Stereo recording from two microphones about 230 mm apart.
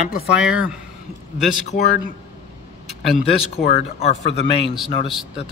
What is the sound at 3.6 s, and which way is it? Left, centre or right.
Speech, left.